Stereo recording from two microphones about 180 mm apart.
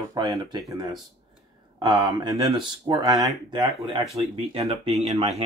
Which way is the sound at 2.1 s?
20° right (ahead or behind).